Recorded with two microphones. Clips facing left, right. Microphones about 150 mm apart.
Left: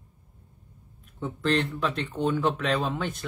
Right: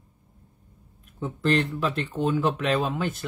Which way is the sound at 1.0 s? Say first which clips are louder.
Right 2 dB; 5° right (ahead or behind).